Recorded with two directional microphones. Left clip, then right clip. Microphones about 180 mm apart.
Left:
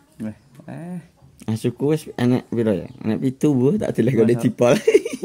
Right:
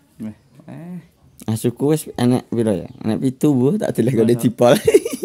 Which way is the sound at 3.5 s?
15° right (ahead or behind).